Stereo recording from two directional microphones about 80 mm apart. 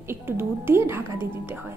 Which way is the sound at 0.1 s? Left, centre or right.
Right.